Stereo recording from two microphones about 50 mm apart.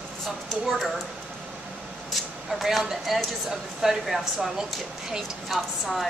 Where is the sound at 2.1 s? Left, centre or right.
Centre.